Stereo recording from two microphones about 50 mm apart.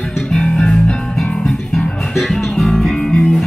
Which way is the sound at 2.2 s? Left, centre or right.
Centre.